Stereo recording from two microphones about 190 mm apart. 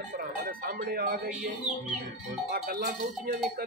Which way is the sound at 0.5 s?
50° right (ahead or behind).